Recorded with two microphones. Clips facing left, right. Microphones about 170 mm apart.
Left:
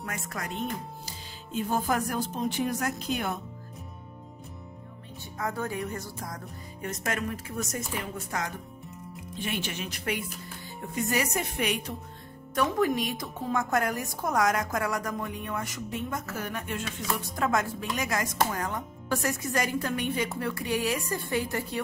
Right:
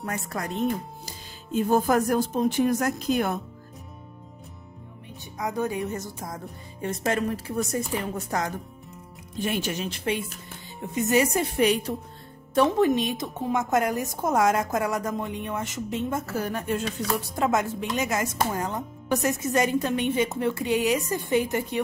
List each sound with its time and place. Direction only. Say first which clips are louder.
0.0 s speech: right 5 dB; 35° right (ahead or behind)
5.4 s speech: right 4 dB; 20° right (ahead or behind); by 9.8 s 40° right (ahead or behind)
9.8 s speech: right 4 dB; 25° right (ahead or behind)
17.4 s speech: right 3 dB; 20° right (ahead or behind)